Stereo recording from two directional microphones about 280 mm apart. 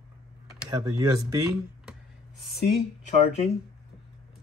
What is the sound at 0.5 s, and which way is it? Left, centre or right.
Speech, centre.